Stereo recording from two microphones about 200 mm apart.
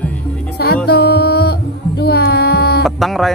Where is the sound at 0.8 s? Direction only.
50° left (ahead or behind).